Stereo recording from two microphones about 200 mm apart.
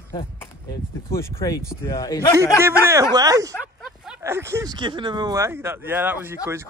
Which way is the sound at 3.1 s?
20° right (ahead or behind).